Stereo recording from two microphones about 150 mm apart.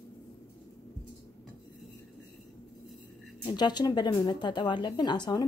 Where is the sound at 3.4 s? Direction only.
30° left (ahead or behind).